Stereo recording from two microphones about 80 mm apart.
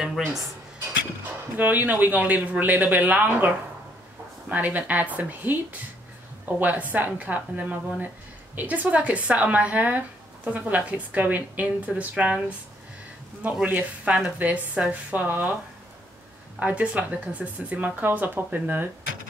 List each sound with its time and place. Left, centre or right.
0.0 s speech: centre
1.6 s speech: right
16.5 s speech: centre